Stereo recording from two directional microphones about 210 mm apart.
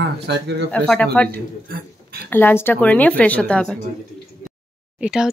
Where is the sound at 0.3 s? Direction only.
55° right (ahead or behind).